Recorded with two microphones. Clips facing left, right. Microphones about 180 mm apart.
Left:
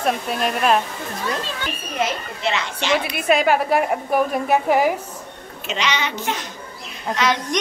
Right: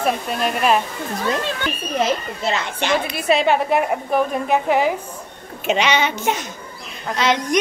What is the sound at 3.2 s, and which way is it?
Speech, 30° right (ahead or behind).